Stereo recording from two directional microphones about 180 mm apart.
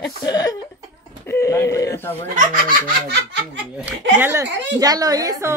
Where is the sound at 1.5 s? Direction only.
15° left (ahead or behind).